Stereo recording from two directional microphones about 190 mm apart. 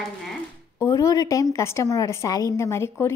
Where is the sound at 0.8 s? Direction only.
15° left (ahead or behind).